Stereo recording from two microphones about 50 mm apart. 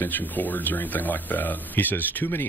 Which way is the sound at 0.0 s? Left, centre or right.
Left.